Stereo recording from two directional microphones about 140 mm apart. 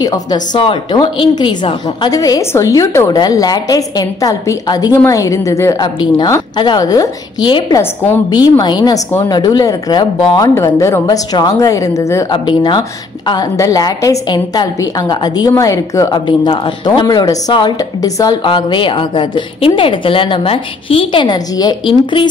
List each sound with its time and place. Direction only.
0.0 s a woman's voice: 30° left (ahead or behind)
7.8 s a woman's voice: 15° left (ahead or behind)
8.3 s a woman's voice: 30° left (ahead or behind)
10.5 s a woman's voice: 20° left (ahead or behind)
12.3 s a woman's voice: 35° left (ahead or behind)
16.3 s a woman's voice: 35° left (ahead or behind)